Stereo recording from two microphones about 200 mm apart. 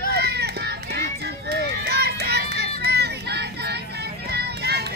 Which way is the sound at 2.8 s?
55° right (ahead or behind).